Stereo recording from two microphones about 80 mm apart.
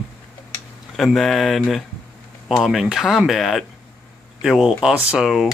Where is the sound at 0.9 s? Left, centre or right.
Centre.